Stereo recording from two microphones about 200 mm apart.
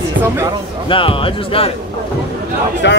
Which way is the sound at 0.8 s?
25° left (ahead or behind).